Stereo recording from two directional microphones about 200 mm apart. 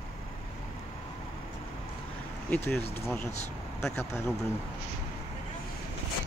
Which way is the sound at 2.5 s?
10° left (ahead or behind).